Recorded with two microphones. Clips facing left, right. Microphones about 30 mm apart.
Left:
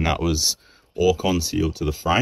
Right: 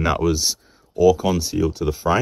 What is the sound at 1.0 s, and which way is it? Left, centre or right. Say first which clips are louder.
Speech: right 3 dB; left.